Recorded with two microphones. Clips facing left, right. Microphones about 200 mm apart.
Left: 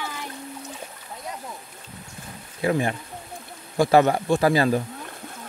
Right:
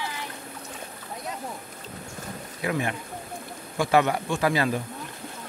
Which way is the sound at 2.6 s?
30° left (ahead or behind).